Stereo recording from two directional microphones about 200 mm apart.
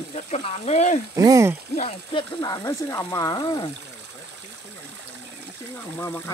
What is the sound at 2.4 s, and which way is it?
Speech, 20° left (ahead or behind).